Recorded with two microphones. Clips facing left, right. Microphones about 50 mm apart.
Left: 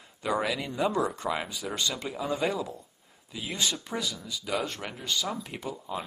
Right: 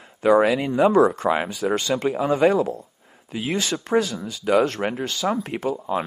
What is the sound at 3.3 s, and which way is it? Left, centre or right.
Speech, right.